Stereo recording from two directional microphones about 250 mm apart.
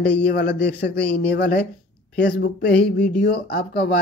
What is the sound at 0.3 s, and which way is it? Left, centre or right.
Speech, left.